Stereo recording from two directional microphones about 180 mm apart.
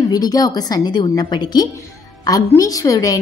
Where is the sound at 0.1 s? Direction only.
20° left (ahead or behind).